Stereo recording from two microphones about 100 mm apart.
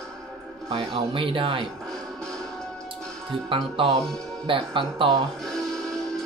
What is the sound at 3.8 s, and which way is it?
Speech, 65° right (ahead or behind).